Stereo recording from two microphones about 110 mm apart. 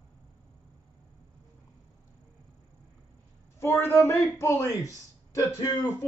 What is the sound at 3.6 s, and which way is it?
Speech, 25° left (ahead or behind).